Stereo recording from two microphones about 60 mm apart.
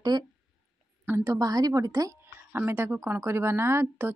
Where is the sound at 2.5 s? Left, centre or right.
Right.